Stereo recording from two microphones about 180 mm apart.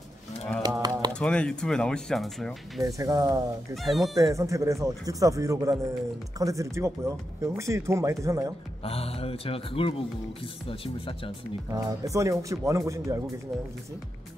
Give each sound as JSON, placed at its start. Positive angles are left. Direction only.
{"t": 0.6, "sound": "a sound", "side_deg": -20}
{"t": 1.1, "sound": "speech", "side_deg": 5}
{"t": 3.0, "sound": "speech", "side_deg": -20}
{"t": 3.7, "sound": "speech", "side_deg": 0}
{"t": 4.1, "sound": "speech", "side_deg": -15}
{"t": 8.8, "sound": "speech", "side_deg": 35}
{"t": 11.7, "sound": "speech", "side_deg": -20}